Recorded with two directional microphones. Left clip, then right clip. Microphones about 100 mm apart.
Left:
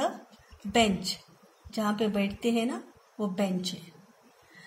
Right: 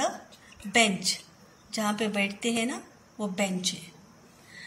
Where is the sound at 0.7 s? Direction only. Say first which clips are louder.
Right 2 dB; 75° left (ahead or behind).